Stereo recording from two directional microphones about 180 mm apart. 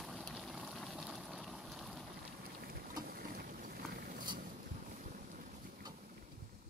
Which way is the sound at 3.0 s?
55° right (ahead or behind).